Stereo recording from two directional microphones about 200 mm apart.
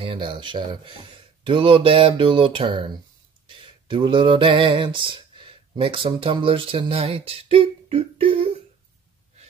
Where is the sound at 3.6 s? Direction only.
25° right (ahead or behind).